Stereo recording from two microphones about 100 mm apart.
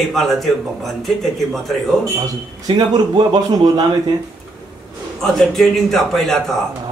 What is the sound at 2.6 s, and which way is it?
A man's voice, 45° right (ahead or behind).